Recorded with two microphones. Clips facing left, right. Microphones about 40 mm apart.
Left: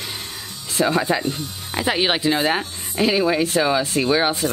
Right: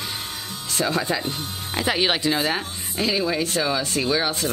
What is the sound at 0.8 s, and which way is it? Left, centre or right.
Speech, centre.